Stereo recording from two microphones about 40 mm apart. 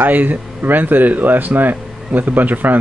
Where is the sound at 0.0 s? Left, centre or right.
Right.